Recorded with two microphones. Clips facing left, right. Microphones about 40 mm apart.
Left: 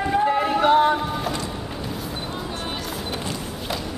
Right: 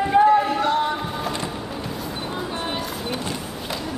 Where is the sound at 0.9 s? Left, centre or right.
Centre.